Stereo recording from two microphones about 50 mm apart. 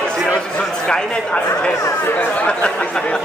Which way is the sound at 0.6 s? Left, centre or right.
Centre.